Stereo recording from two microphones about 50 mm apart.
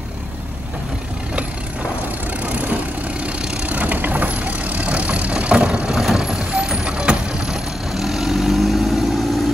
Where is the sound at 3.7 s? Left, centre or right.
Right.